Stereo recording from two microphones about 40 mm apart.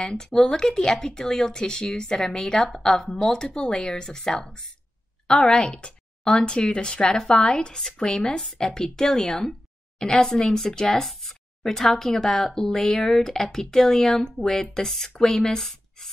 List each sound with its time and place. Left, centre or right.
0.0 s a woman's voice: centre